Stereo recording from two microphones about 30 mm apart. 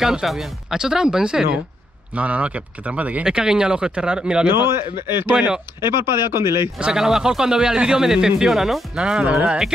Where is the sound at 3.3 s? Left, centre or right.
Right.